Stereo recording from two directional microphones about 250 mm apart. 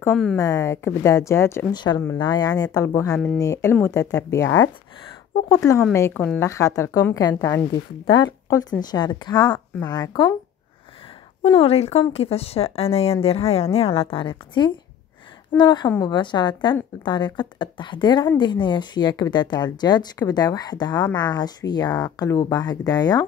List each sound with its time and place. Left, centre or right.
0.1 s speech: centre
0.4 s speech: centre
5.5 s speech: centre
11.4 s a woman's voice: left